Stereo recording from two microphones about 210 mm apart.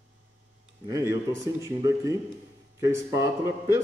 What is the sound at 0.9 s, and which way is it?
Speech, 15° right (ahead or behind).